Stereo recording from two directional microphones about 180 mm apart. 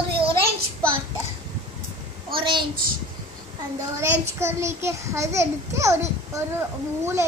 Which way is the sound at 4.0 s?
15° right (ahead or behind).